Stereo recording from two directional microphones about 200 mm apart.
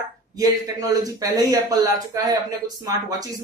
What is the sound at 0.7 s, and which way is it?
Speech, 20° right (ahead or behind).